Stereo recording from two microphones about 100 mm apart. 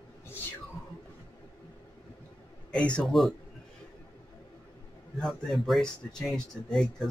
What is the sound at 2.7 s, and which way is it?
Speech, 10° left (ahead or behind).